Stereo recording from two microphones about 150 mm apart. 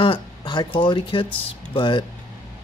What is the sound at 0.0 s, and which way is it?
Speech, 35° left (ahead or behind).